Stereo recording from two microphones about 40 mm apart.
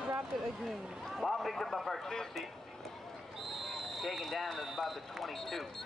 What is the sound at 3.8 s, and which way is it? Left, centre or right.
Speech, centre.